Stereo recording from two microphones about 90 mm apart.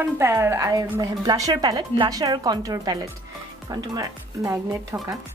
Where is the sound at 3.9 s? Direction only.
35° right (ahead or behind).